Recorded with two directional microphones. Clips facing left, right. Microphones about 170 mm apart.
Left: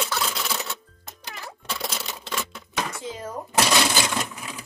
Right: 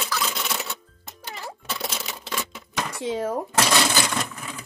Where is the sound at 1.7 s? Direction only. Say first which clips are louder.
Left 1 dB; centre (ahead or behind).